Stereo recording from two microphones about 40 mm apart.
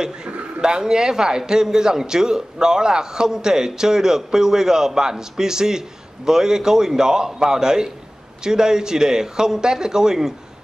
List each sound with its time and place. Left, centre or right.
0.0 s a man's voice: centre